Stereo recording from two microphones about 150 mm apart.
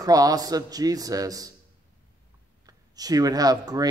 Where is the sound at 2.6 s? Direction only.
25° right (ahead or behind).